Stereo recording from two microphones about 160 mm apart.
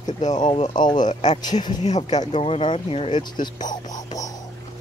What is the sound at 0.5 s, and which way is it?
Speech, 50° left (ahead or behind).